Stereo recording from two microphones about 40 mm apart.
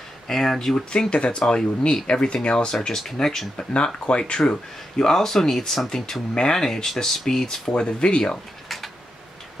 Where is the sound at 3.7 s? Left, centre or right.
Left.